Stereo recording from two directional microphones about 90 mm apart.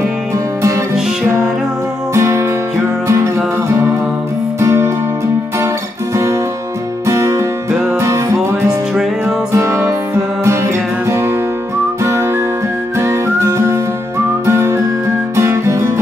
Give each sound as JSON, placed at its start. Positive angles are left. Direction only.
{"t": 0.6, "sound": "music", "side_deg": -35}
{"t": 2.1, "sound": "music", "side_deg": -30}
{"t": 7.1, "sound": "music", "side_deg": -35}
{"t": 9.2, "sound": "music", "side_deg": -30}
{"t": 12.9, "sound": "whistling", "side_deg": -30}
{"t": 14.4, "sound": "music", "side_deg": -30}